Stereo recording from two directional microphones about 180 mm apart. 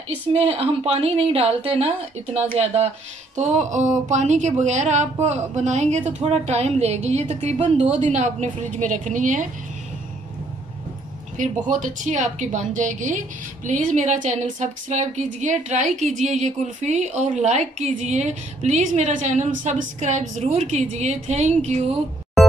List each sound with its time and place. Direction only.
0.3 s speech: 35° right (ahead or behind)
11.3 s a woman's voice: 45° right (ahead or behind)